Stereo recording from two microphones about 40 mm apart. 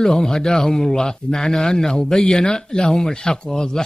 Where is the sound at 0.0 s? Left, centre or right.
Centre.